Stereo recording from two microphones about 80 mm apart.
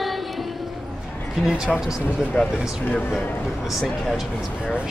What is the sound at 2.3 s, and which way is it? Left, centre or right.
Speech, centre.